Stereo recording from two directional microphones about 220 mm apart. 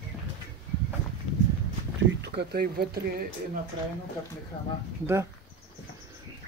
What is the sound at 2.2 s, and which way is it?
Speech, 45° right (ahead or behind).